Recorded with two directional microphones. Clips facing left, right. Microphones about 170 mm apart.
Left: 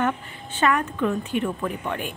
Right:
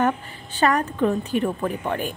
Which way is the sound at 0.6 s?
35° right (ahead or behind).